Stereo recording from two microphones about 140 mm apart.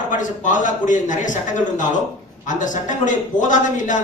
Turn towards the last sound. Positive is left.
turn(degrees=65)  # may be behind; listen again after turning